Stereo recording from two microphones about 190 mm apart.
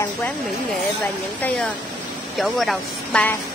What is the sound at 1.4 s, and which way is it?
Speech, 5° left (ahead or behind).